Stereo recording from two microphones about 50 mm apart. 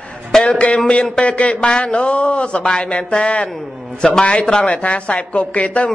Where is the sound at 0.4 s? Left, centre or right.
Left.